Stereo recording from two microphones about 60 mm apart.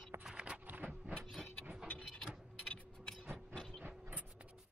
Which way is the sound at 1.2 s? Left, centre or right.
Centre.